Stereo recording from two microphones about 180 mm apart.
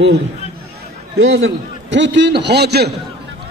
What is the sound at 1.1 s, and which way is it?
A man's voice, 90° right.